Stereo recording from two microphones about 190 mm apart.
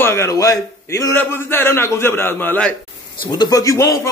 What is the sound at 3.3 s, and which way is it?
Speech, 20° left (ahead or behind).